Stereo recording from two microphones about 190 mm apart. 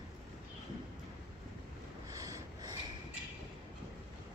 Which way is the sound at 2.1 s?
20° right (ahead or behind).